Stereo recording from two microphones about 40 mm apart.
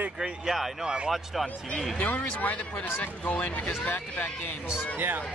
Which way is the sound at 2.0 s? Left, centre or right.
Left.